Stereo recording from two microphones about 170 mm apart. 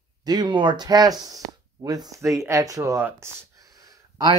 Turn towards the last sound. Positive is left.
turn(degrees=-20)  # may be behind; listen again after turning